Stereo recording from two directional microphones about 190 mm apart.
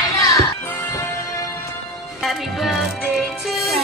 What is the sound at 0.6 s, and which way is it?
Music, 15° left (ahead or behind).